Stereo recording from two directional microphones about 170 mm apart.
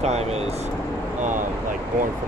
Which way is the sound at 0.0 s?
40° right (ahead or behind).